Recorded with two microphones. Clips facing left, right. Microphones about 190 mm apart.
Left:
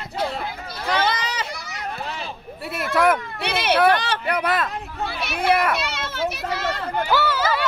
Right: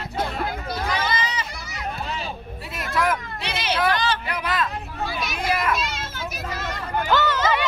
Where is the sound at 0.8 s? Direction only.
70° left (ahead or behind).